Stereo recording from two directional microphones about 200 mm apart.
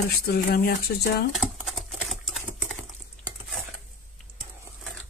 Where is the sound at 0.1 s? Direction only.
50° left (ahead or behind).